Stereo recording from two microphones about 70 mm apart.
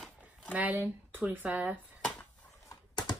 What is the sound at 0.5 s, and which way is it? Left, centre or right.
Speech, right.